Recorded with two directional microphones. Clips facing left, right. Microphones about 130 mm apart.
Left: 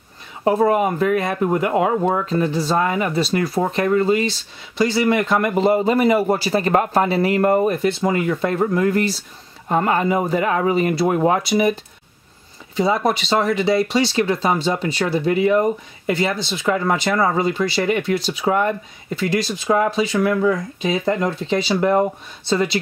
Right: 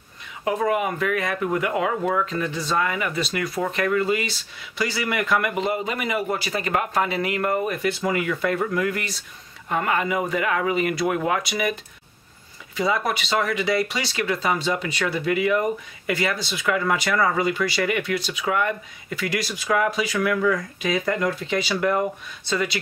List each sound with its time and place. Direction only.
0.4 s speech: 35° left (ahead or behind)